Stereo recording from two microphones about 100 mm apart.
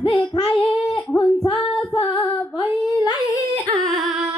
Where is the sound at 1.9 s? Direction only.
55° left (ahead or behind).